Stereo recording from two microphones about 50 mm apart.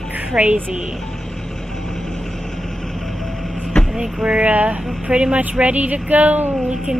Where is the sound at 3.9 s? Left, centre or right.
Centre; by 6.5 s right.